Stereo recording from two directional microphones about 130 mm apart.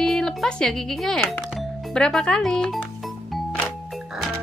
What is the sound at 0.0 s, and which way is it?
Speech, 5° left (ahead or behind).